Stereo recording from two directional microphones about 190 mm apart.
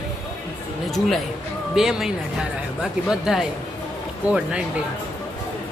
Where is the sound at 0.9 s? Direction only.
Centre (ahead or behind).